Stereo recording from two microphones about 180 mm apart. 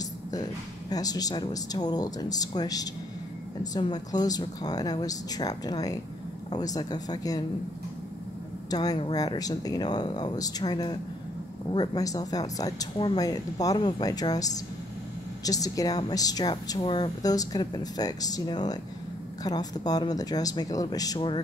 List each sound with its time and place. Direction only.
0.3 s a woman's voice: 20° left (ahead or behind)
8.6 s a woman's voice: 20° left (ahead or behind)